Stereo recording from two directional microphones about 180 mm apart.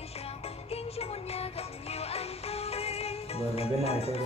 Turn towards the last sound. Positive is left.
turn(degrees=35)  # may be behind; listen again after turning